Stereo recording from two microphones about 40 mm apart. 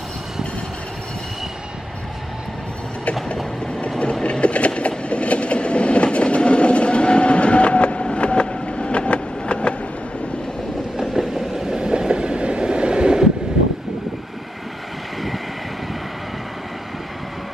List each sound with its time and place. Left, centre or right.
4.0 s train: left
11.0 s train: centre